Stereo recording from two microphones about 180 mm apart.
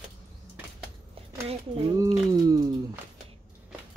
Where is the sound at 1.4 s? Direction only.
30° right (ahead or behind).